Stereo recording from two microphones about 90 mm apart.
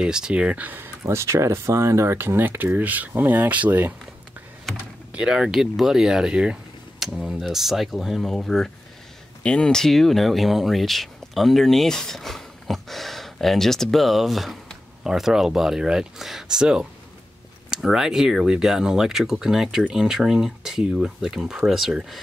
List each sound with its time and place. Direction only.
0.0 s speech: 10° right (ahead or behind)
4.7 s speech: 5° left (ahead or behind)
5.1 s speech: 10° right (ahead or behind)